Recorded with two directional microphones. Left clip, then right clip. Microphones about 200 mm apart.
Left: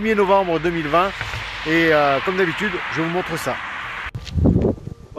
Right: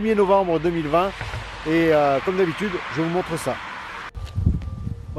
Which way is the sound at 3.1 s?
Centre (ahead or behind).